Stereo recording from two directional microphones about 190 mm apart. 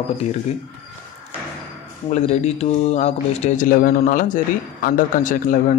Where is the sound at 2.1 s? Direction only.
35° left (ahead or behind).